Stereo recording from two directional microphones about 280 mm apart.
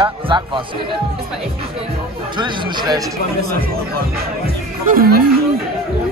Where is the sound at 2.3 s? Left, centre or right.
Centre.